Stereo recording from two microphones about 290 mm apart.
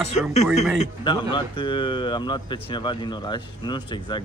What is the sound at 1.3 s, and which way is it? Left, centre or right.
Speech, centre.